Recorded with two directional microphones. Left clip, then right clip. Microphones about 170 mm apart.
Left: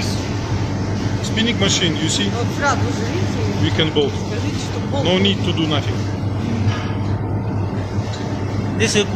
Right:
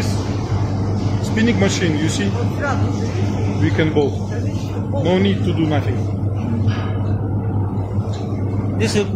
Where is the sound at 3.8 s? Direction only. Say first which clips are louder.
Even; 35° right (ahead or behind).